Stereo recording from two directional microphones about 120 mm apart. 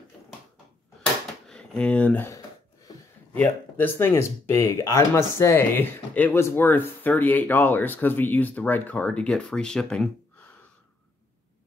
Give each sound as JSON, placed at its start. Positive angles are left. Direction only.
{"t": 1.5, "sound": "speech", "side_deg": 5}
{"t": 2.9, "sound": "a sound", "side_deg": 35}
{"t": 3.3, "sound": "speech", "side_deg": 15}